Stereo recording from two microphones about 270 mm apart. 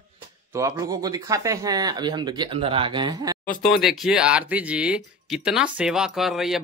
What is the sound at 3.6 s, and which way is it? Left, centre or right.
Speech, centre.